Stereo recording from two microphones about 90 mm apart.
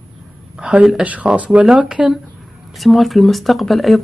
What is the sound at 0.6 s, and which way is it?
Speech, 5° right (ahead or behind).